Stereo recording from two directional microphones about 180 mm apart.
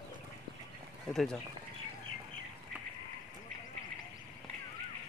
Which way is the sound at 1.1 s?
Centre (ahead or behind).